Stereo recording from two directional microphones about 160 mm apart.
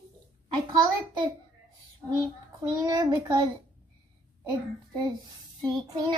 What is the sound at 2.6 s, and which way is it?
Speech, 25° right (ahead or behind).